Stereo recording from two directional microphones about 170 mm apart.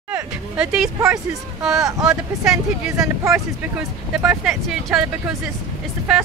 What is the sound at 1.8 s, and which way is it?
Speech, 20° right (ahead or behind).